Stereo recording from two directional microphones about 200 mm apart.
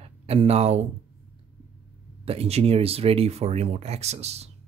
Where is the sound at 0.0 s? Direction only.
30° right (ahead or behind).